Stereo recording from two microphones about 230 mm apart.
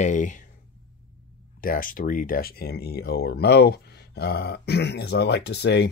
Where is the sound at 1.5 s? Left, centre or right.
Left.